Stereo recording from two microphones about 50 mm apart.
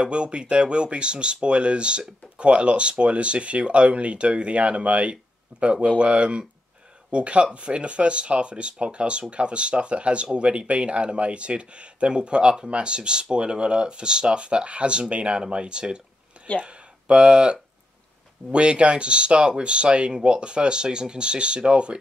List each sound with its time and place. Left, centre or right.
0.0 s speech: right